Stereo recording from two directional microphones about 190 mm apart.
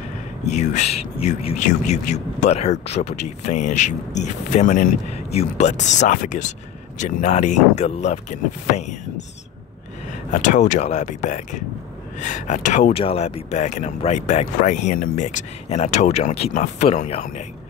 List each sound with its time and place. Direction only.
0.5 s speech: 35° left (ahead or behind)
10.3 s speech: 40° left (ahead or behind)